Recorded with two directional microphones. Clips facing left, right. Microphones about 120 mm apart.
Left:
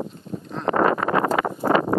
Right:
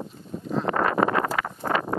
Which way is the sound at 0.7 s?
30° left (ahead or behind).